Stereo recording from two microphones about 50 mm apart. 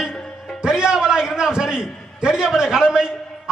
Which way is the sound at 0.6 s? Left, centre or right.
Centre.